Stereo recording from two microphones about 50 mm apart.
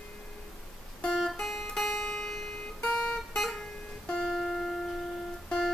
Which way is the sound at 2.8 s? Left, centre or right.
Centre.